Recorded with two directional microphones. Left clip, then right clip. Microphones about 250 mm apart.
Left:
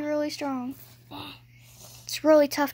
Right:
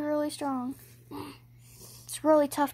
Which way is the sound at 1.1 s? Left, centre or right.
Left.